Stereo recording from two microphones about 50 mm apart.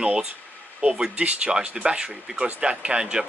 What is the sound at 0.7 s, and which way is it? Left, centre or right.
Speech, centre.